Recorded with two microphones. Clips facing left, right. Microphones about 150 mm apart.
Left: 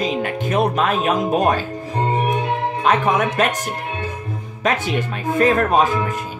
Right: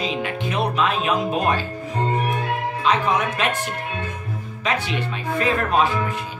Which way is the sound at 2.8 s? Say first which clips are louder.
Left 3 dB; 50° left (ahead or behind).